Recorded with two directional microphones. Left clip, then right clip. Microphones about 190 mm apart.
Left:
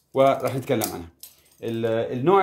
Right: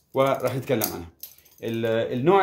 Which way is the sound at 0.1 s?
20° left (ahead or behind).